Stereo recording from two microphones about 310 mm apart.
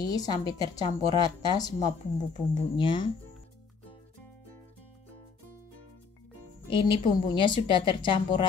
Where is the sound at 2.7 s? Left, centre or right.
Centre.